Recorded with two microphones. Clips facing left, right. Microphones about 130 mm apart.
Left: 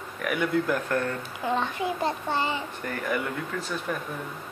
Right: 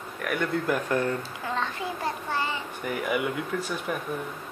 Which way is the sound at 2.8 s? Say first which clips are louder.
Right 4 dB; 10° right (ahead or behind).